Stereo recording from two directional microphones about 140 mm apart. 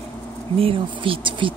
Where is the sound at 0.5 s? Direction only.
40° right (ahead or behind).